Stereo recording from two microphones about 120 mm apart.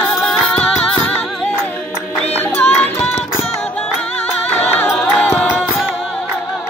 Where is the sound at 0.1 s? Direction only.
5° left (ahead or behind).